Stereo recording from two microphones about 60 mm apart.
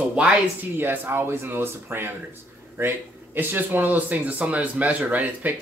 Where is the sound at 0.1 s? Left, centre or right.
Centre.